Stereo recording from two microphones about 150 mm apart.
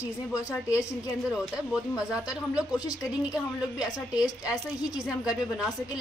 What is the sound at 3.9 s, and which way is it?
Speech, 25° left (ahead or behind).